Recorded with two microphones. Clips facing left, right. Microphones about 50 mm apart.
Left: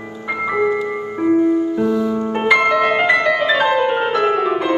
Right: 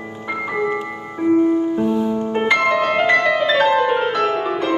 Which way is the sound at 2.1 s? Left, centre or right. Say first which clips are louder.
Left 2 dB; left.